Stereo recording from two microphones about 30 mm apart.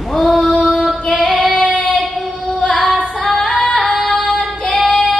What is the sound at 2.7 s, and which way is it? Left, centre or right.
Female singing, centre.